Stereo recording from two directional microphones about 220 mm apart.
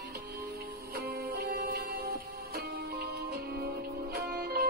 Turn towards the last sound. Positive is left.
turn(degrees=-40)  # may be behind; listen again after turning